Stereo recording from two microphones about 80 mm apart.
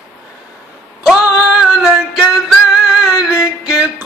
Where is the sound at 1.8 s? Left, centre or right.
Centre.